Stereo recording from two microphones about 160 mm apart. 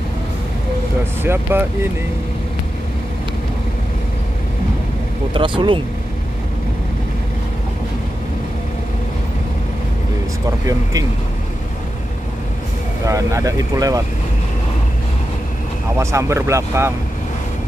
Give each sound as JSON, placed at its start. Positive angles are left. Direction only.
{"t": 1.2, "sound": "speech", "side_deg": -15}
{"t": 5.3, "sound": "speech", "side_deg": -30}
{"t": 10.7, "sound": "speech", "side_deg": -20}
{"t": 13.0, "sound": "speech", "side_deg": -20}
{"t": 16.0, "sound": "speech", "side_deg": -15}